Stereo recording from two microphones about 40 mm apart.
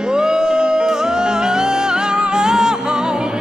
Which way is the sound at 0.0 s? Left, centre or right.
Centre.